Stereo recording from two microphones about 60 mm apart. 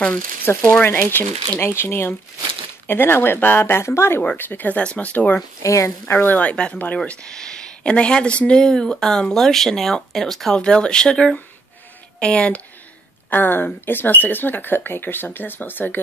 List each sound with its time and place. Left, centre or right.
0.5 s speech: left
0.9 s speech: left
1.6 s speech: left
4.4 s speech: left
5.6 s speech: left
6.0 s speech: left
6.5 s speech: centre
13.3 s speech: left